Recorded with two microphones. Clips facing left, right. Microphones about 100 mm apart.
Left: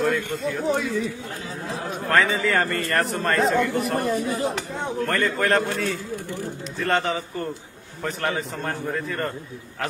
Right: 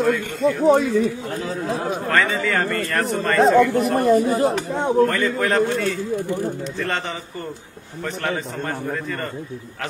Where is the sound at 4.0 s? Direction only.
50° right (ahead or behind).